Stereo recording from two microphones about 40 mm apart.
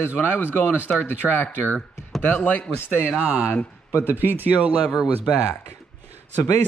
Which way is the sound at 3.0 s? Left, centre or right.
Right.